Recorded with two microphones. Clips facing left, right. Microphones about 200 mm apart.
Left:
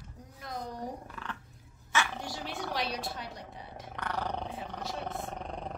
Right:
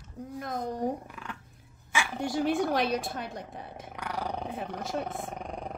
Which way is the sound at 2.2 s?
50° right (ahead or behind).